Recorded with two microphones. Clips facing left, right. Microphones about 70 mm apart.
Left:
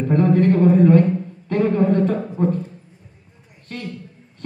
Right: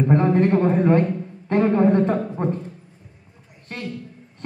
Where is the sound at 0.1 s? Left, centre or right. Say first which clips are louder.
Left 3 dB; right.